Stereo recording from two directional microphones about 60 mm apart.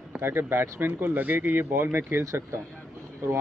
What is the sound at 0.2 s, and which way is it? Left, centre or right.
Speech, right.